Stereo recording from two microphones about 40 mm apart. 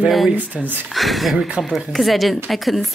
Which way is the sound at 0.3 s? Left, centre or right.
Right.